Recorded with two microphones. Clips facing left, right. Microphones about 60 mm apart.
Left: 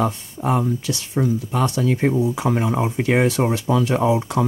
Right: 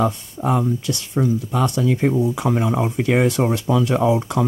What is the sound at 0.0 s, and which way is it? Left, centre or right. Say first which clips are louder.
Speech: right 1 dB; centre.